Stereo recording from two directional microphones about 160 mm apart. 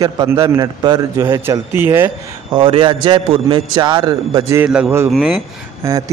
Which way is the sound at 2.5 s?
35° right (ahead or behind).